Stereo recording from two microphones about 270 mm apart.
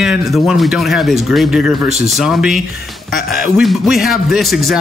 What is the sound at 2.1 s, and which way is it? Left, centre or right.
Speech, centre.